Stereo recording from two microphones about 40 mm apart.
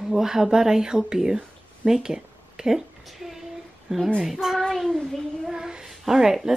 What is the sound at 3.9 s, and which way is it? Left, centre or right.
Speech, centre.